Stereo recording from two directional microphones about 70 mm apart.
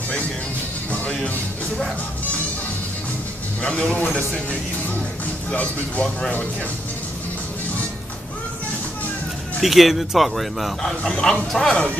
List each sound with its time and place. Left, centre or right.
0.9 s speech: centre
3.6 s a man's voice: centre
9.6 s speech: centre